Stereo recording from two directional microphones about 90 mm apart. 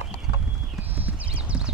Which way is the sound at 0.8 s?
20° right (ahead or behind).